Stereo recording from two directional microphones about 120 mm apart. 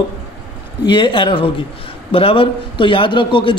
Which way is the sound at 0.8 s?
45° left (ahead or behind).